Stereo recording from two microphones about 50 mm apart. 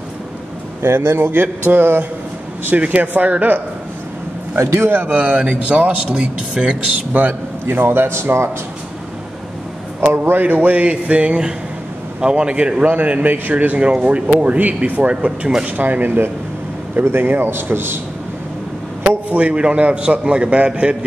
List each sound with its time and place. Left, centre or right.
0.8 s a man's voice: right
2.7 s a man's voice: right
4.6 s a man's voice: right
5.0 s a man's voice: right
7.1 s a man's voice: right
9.9 s a man's voice: right
12.8 s speech: right
15.8 s a man's voice: right
19.0 s a man's voice: right